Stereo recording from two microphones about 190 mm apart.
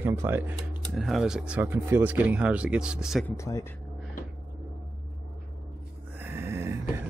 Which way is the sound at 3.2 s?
15° left (ahead or behind).